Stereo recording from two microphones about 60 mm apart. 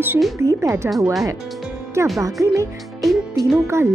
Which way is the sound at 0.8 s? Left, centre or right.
Right.